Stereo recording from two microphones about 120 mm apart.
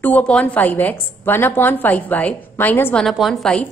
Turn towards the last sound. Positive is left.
turn(degrees=0)  # may be behind; listen again after turning